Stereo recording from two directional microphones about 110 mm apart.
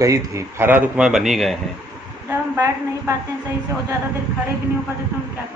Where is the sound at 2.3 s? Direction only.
25° right (ahead or behind).